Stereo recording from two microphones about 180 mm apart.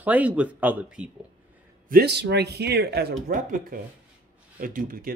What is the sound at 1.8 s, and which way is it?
A man's voice, 60° right (ahead or behind).